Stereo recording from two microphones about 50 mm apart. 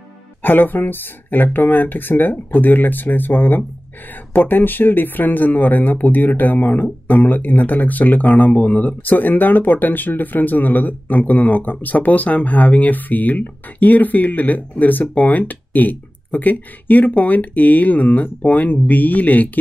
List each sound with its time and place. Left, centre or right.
0.4 s speech: left